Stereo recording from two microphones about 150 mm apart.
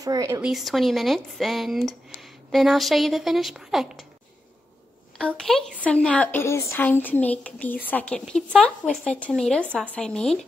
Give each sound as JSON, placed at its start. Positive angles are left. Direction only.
{"t": 0.0, "sound": "speech", "side_deg": -25}
{"t": 0.4, "sound": "speech", "side_deg": 0}
{"t": 5.1, "sound": "a woman's voice", "side_deg": 5}